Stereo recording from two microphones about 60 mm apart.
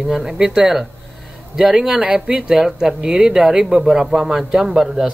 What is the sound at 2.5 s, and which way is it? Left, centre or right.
Speech, centre.